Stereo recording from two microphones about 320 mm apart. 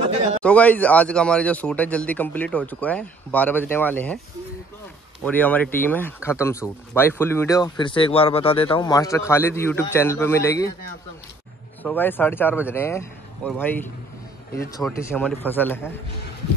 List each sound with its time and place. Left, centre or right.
0.0 s a sound: centre
0.4 s speech: centre
5.2 s speech: centre
11.8 s speech: centre